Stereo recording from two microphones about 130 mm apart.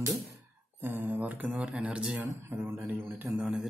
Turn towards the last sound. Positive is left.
turn(degrees=-5)  # may be behind; listen again after turning